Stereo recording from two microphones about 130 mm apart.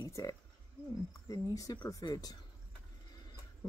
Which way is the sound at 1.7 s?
20° left (ahead or behind).